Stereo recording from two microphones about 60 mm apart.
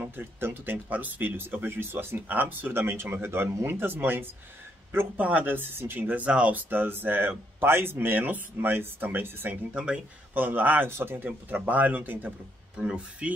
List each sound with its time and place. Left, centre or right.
0.0 s speech: right
6.7 s speech: right
10.9 s speech: right
11.2 s speech: right
12.7 s speech: centre